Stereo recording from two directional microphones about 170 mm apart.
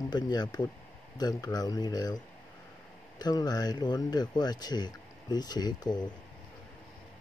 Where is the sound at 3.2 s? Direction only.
20° left (ahead or behind).